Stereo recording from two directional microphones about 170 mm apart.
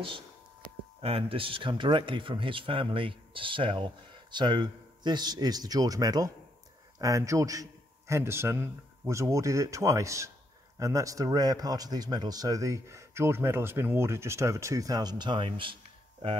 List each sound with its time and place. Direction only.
1.0 s speech: 35° right (ahead or behind)